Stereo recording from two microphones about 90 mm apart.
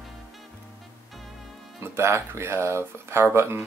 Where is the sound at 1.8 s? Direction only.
30° right (ahead or behind).